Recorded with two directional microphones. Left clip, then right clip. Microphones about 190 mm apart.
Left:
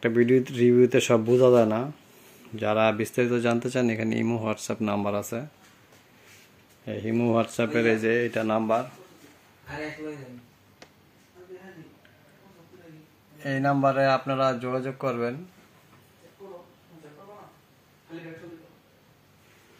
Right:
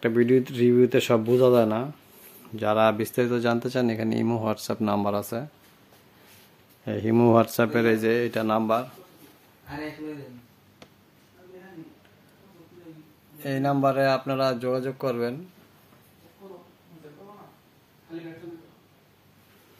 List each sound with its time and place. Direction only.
0.0 s speech: 5° right (ahead or behind)
6.8 s speech: 30° right (ahead or behind); by 8.8 s 10° right (ahead or behind)
13.4 s speech: 5° left (ahead or behind)